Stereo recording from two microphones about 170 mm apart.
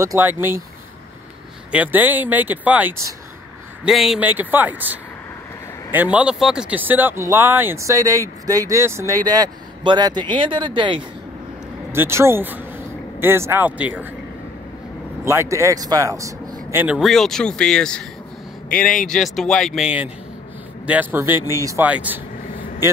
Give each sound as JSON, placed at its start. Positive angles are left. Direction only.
{"t": 0.0, "sound": "speech", "side_deg": -15}
{"t": 1.7, "sound": "speech", "side_deg": -10}
{"t": 3.8, "sound": "speech", "side_deg": 0}
{"t": 11.9, "sound": "speech", "side_deg": -15}
{"t": 15.2, "sound": "speech", "side_deg": -15}
{"t": 16.8, "sound": "a man's voice", "side_deg": -5}